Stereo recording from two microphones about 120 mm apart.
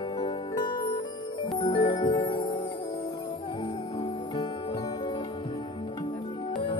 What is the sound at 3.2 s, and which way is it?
Music, 40° left (ahead or behind).